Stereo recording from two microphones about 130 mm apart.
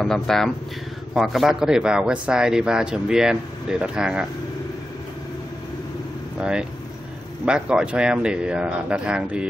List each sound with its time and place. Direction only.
0.0 s a man's voice: 5° left (ahead or behind)
6.4 s speech: 5° right (ahead or behind)